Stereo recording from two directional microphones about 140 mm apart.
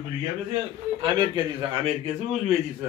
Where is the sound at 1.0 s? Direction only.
35° right (ahead or behind).